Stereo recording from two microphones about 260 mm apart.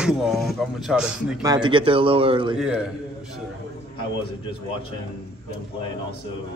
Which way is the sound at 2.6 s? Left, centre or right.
Centre.